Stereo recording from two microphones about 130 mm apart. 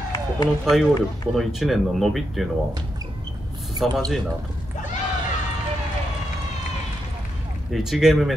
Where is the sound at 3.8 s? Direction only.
Centre (ahead or behind).